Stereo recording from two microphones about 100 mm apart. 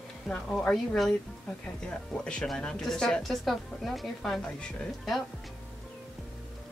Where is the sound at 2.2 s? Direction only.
5° left (ahead or behind).